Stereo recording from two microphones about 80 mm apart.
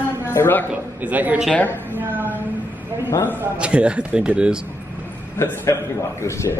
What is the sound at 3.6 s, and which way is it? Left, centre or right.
Speech, centre.